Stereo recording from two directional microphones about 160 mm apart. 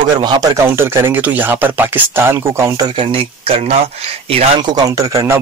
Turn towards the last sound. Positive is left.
turn(degrees=-20)  # may be behind; listen again after turning